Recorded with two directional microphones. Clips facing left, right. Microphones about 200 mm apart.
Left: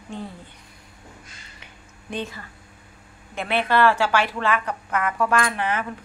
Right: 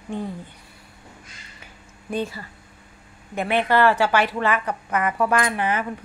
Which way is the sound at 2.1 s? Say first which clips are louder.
Right 4 dB; 10° right (ahead or behind).